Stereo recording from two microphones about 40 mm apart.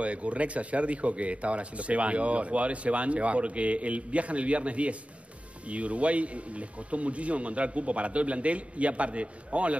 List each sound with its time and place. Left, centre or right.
0.0 s speech: right